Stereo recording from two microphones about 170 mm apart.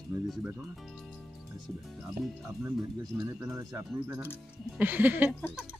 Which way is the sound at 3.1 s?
5° right (ahead or behind).